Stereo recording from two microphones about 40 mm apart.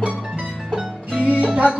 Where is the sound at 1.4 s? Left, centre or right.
Right.